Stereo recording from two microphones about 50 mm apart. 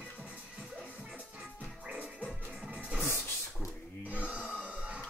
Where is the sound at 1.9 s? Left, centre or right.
Right.